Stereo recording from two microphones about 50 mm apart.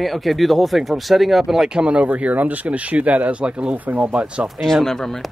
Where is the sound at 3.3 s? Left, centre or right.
Right.